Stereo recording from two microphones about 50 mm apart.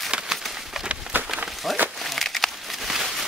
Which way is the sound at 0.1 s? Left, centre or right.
Centre.